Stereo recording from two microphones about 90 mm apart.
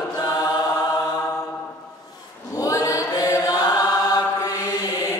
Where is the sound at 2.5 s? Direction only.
40° left (ahead or behind).